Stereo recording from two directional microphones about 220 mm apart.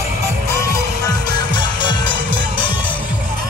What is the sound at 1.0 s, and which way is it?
Music, 20° left (ahead or behind).